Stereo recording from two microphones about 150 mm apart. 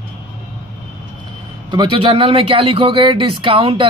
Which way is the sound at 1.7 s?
30° right (ahead or behind).